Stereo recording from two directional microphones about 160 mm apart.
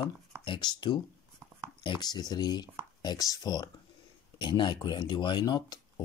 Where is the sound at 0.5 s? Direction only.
30° left (ahead or behind).